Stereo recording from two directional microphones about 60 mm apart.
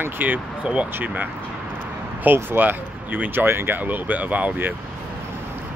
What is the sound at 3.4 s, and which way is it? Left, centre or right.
Speech, right.